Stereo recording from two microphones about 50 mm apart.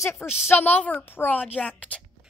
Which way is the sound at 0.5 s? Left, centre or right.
Left.